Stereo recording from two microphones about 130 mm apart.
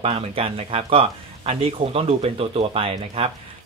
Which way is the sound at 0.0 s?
50° right (ahead or behind).